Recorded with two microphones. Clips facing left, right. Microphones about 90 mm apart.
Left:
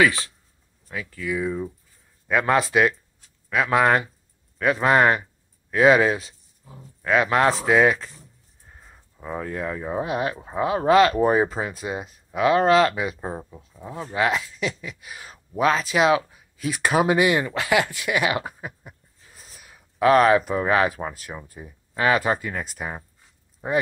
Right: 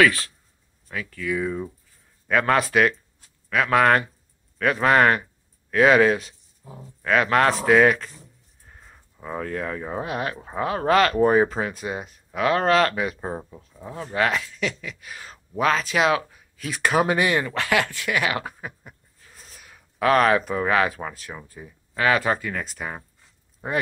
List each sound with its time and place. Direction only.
0.0 s speech: 15° left (ahead or behind)
6.6 s speech: 15° right (ahead or behind)
7.1 s speech: 15° left (ahead or behind)
10.0 s speech: 20° left (ahead or behind)
10.3 s speech: 5° left (ahead or behind)
10.6 s speech: 20° left (ahead or behind)
13.3 s speech: 5° right (ahead or behind)
14.1 s speech: 20° left (ahead or behind)
19.3 s sniff: 5° left (ahead or behind)
20.0 s speech: 15° left (ahead or behind)
21.1 s speech: 10° left (ahead or behind)
22.7 s speech: 10° left (ahead or behind)